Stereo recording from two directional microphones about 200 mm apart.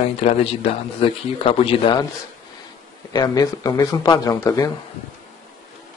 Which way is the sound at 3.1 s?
20° left (ahead or behind).